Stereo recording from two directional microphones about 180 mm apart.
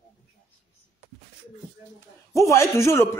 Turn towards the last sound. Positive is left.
turn(degrees=15)  # may be behind; listen again after turning